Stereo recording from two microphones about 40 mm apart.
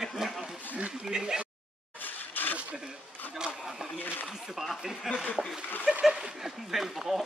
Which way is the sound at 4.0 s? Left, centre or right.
Left.